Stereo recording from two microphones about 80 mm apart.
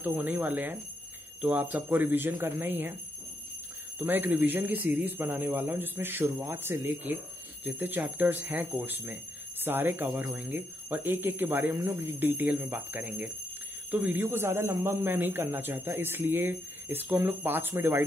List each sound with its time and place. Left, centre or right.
0.0 s speech: right
4.0 s speech: right